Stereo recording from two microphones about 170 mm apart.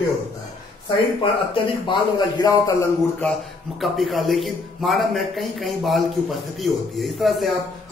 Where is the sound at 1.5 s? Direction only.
25° left (ahead or behind).